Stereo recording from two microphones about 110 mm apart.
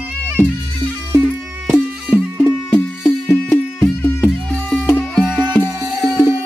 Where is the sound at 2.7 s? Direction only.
15° left (ahead or behind).